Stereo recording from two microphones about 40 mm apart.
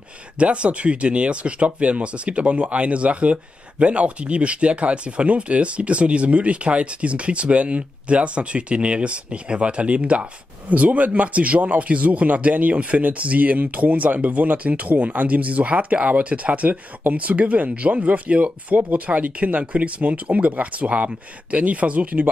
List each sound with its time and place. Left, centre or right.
0.4 s speech: right